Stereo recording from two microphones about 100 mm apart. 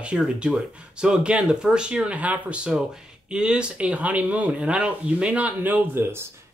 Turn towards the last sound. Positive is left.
turn(degrees=-25)  # may be behind; listen again after turning